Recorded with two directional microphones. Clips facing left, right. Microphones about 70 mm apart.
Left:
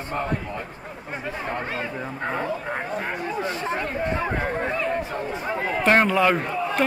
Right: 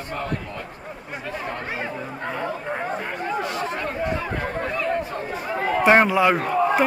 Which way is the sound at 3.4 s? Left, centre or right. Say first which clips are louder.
Even; left.